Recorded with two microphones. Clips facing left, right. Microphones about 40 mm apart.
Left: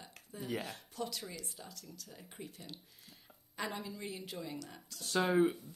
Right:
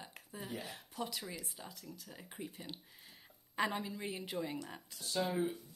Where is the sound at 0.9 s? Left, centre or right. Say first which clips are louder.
Even; centre.